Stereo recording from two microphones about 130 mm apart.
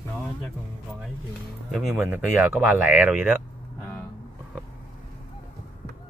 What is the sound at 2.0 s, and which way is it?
Speech, 15° right (ahead or behind).